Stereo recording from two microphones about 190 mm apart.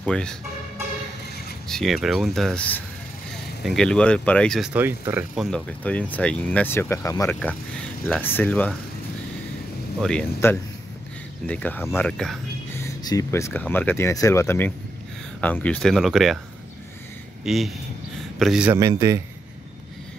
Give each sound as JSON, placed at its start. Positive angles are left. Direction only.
{"t": 0.0, "sound": "speech", "side_deg": 5}
{"t": 1.7, "sound": "speech", "side_deg": 0}
{"t": 9.9, "sound": "speech", "side_deg": 5}
{"t": 12.7, "sound": "speech", "side_deg": 15}
{"t": 17.5, "sound": "speech", "side_deg": 0}
{"t": 18.8, "sound": "speech", "side_deg": -15}